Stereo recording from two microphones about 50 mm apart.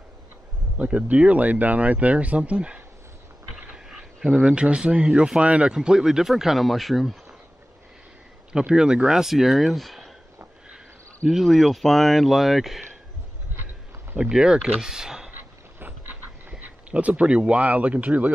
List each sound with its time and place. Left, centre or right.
0.7 s speech: right
3.7 s speech: centre
5.8 s speech: centre
8.5 s speech: centre
11.2 s speech: centre
14.3 s speech: centre
15.8 s a sound: right